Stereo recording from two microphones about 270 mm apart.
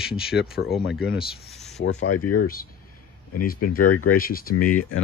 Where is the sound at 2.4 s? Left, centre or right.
Left.